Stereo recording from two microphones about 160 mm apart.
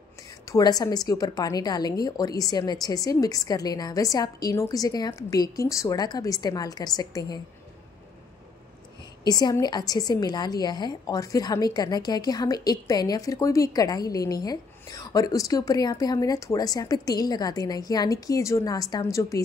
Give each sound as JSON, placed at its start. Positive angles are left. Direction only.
{"t": 0.5, "sound": "a woman's voice", "side_deg": 25}
{"t": 9.2, "sound": "a woman's voice", "side_deg": 25}